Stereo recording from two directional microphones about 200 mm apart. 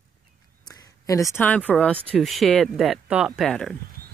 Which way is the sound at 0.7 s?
15° left (ahead or behind).